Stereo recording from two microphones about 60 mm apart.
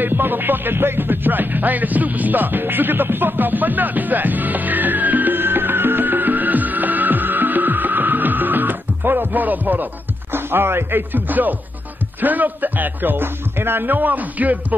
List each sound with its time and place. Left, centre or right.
0.0 s music: right
10.3 s speech: right